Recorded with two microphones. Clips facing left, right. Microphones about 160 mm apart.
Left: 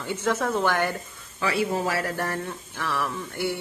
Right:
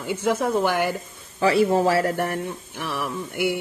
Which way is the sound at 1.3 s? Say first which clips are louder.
Right 7 dB; 35° right (ahead or behind).